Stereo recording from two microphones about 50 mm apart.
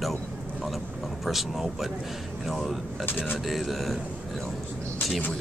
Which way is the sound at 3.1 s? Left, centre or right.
Left.